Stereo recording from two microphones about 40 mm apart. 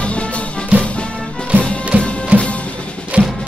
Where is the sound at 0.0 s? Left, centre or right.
Left.